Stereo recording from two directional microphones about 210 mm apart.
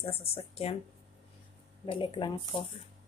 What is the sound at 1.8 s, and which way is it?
Speech, 25° left (ahead or behind).